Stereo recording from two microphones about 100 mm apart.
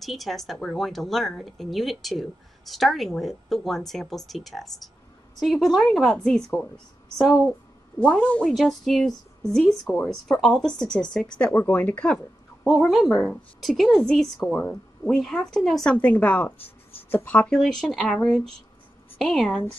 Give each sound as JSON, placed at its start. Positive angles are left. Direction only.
{"t": 0.0, "sound": "speech", "side_deg": 0}
{"t": 8.0, "sound": "speech", "side_deg": 10}
{"t": 8.5, "sound": "speech", "side_deg": 0}
{"t": 12.6, "sound": "speech", "side_deg": 0}
{"t": 17.5, "sound": "speech", "side_deg": 5}